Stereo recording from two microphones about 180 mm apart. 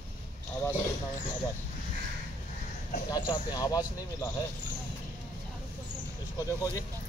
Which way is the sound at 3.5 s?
20° left (ahead or behind).